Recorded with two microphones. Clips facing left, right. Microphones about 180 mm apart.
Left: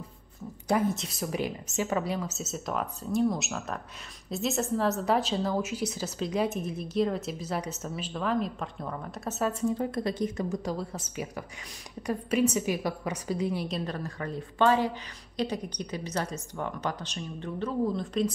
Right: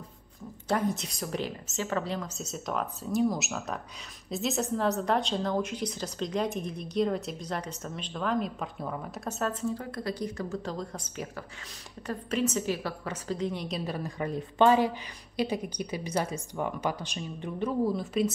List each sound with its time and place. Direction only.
0.7 s a woman's voice: 5° left (ahead or behind)
9.7 s speech: 25° left (ahead or behind)
10.6 s a woman's voice: 10° left (ahead or behind)
12.1 s a woman's voice: 10° left (ahead or behind); by 18.3 s 5° right (ahead or behind)